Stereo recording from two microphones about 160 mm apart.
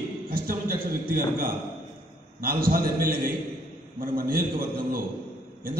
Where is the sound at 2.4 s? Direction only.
65° right (ahead or behind).